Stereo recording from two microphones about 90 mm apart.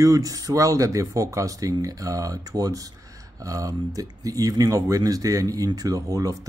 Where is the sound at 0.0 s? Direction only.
40° right (ahead or behind).